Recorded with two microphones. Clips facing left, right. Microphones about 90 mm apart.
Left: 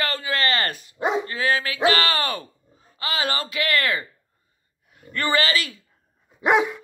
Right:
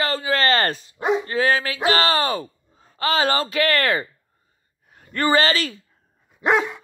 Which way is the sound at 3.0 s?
35° right (ahead or behind).